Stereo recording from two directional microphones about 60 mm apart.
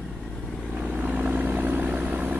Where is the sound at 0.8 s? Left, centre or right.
Right.